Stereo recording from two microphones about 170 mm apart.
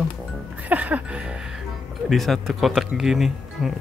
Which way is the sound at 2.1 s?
Centre (ahead or behind).